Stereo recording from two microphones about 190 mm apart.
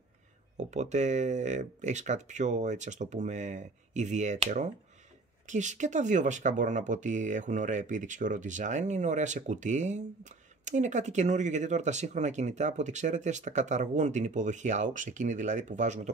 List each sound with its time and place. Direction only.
0.6 s speech: 40° right (ahead or behind)